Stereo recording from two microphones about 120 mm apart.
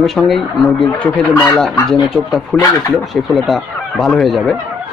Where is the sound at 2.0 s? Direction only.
5° left (ahead or behind).